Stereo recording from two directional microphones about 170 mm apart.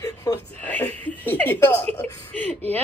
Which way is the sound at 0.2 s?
15° left (ahead or behind).